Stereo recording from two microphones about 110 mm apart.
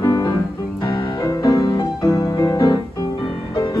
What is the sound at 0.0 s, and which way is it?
Music, 30° left (ahead or behind).